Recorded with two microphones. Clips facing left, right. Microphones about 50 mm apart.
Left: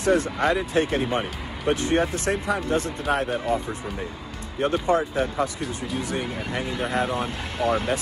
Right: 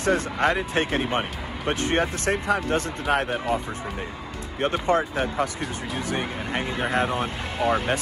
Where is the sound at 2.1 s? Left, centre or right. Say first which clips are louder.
Right 1 dB; right.